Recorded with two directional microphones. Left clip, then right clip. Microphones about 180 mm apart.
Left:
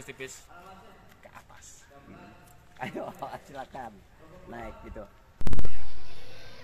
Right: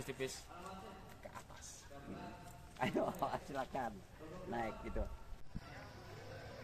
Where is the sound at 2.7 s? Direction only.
75° left (ahead or behind).